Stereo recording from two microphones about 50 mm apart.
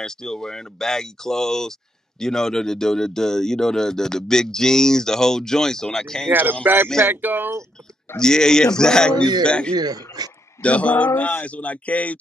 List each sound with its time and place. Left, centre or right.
0.0 s speech: centre
6.6 s speech: right
8.2 s a man's voice: centre; by 12.2 s left